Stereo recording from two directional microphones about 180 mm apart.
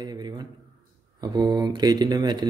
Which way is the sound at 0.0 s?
20° right (ahead or behind).